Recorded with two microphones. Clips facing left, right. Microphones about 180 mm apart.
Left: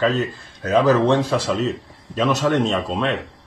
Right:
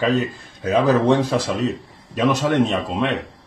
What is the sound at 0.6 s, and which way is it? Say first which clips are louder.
A man's voice: left 1 dB; 15° right (ahead or behind).